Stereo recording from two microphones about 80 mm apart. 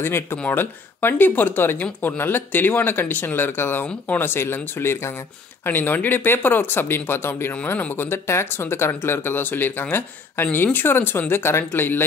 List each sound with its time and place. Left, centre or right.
0.0 s speech: left